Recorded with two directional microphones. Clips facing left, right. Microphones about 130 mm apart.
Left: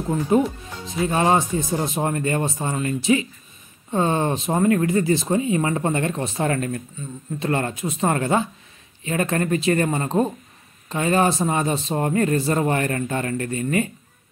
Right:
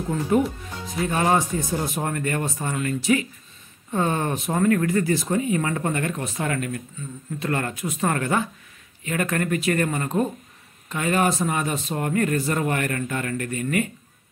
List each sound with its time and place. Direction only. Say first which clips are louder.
0.3 s a man's voice: left 2 dB; 20° left (ahead or behind)